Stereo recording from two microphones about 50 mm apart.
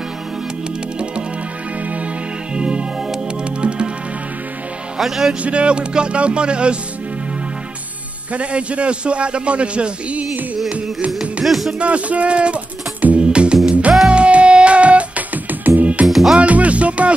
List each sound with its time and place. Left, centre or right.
2.5 s music: centre
4.9 s music: centre
5.4 s a man's voice: right
8.3 s a man's voice: right
11.4 s music: centre
11.8 s a man's voice: right
13.2 s music: centre; by 15.9 s right
16.1 s music: centre
16.3 s music: right